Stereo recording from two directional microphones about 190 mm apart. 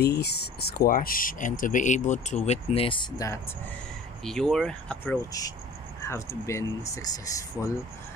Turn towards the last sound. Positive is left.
turn(degrees=15)  # may be behind; listen again after turning